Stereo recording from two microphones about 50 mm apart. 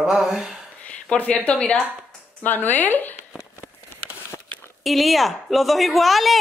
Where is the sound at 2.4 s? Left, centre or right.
Left.